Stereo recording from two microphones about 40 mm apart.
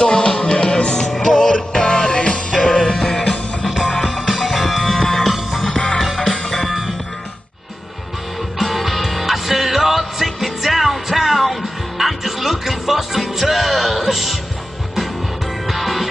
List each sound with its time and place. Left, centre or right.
0.0 s music: left
1.0 s music: centre; by 2.6 s left
2.6 s music: centre
3.6 s music: centre
5.3 s music: centre
6.3 s music: centre
8.5 s music: centre
15.6 s music: centre